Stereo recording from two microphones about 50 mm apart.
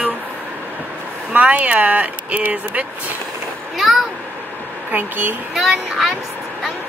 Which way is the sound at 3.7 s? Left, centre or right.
Centre.